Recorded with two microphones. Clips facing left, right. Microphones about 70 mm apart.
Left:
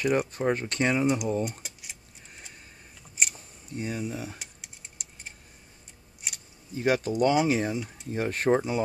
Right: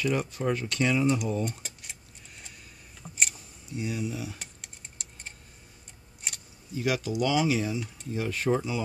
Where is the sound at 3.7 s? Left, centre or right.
Left.